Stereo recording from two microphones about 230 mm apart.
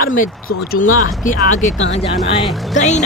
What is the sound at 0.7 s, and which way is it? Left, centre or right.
Speech, left.